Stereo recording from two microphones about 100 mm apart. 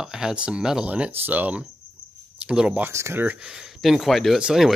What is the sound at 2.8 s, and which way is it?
Speech, 25° right (ahead or behind).